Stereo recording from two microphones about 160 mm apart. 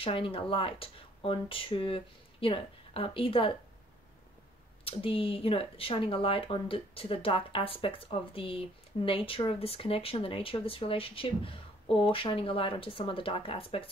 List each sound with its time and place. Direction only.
0.0 s speech: 35° left (ahead or behind)
4.8 s speech: 35° left (ahead or behind)